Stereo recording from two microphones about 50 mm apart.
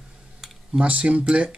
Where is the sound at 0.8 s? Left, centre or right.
Right.